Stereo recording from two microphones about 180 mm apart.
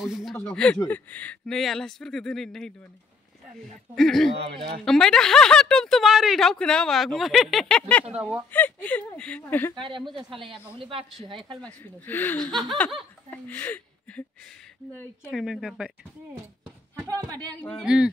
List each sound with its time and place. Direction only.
0.0 s speech: centre (ahead or behind)
3.9 s speech: centre (ahead or behind)
4.4 s speech: 30° right (ahead or behind)
4.8 s speech: 5° left (ahead or behind)
8.2 s speech: 10° right (ahead or behind)
8.5 s speech: 10° left (ahead or behind)
9.8 s a man's voice: 25° right (ahead or behind)
11.6 s speech: 10° left (ahead or behind)
15.3 s speech: centre (ahead or behind)
17.1 s a man's voice: 20° right (ahead or behind)
17.6 s speech: 10° left (ahead or behind)
17.8 s speech: 5° right (ahead or behind)